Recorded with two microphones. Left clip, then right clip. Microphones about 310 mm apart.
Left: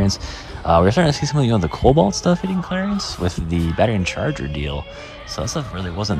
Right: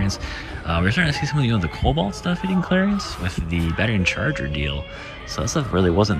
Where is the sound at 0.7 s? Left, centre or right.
Centre.